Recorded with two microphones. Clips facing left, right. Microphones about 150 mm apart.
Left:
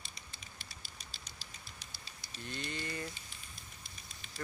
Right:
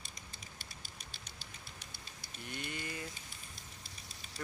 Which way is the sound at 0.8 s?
55° right (ahead or behind).